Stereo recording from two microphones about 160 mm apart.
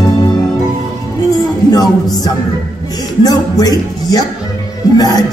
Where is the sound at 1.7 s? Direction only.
25° left (ahead or behind).